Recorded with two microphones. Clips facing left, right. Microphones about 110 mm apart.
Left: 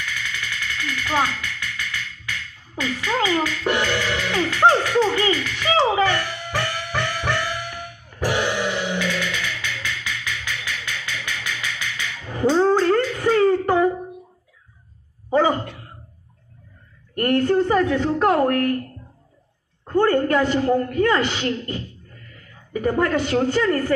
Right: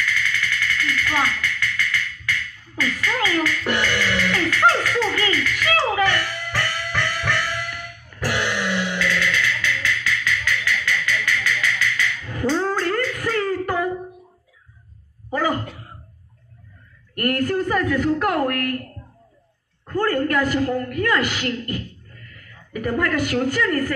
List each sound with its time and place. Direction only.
0.0 s music: 20° left (ahead or behind)
15.2 s a sound: 25° left (ahead or behind)
17.1 s a man's voice: 25° left (ahead or behind)
19.9 s a man's voice: 25° left (ahead or behind)